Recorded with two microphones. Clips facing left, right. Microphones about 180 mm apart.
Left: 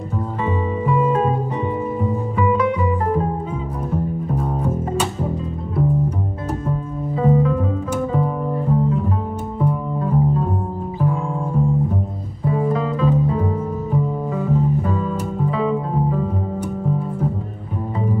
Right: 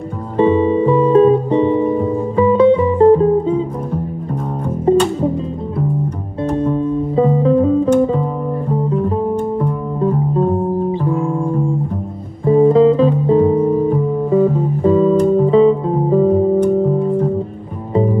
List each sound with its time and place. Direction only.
0.4 s music: 30° right (ahead or behind)
7.2 s music: 30° right (ahead or behind)
12.4 s music: 30° right (ahead or behind)